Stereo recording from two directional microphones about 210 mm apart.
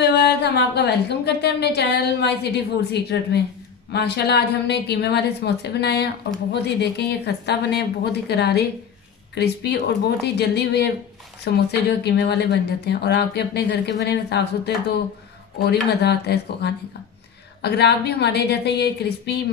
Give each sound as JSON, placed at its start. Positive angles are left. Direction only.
{"t": 0.0, "sound": "a woman's voice", "side_deg": 50}
{"t": 15.6, "sound": "a woman's voice", "side_deg": 50}